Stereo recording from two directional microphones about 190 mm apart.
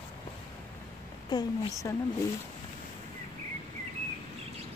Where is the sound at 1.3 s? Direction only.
20° left (ahead or behind).